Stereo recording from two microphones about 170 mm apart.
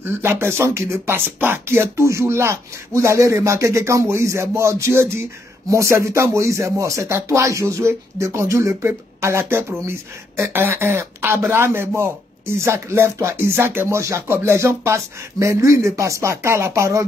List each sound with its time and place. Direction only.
0.0 s speech: 15° right (ahead or behind)